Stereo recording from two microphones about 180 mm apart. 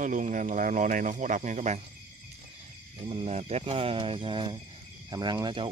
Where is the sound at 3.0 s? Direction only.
35° right (ahead or behind).